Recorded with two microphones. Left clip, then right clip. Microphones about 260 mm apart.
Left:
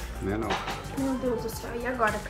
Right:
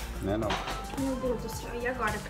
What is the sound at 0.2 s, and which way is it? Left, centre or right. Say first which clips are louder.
Speech: even; right.